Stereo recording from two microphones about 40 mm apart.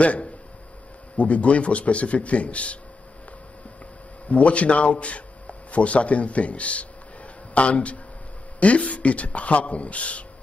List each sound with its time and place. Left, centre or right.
0.0 s speech: left
4.3 s speech: left